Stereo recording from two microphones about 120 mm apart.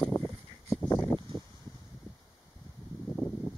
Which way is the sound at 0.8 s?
15° left (ahead or behind).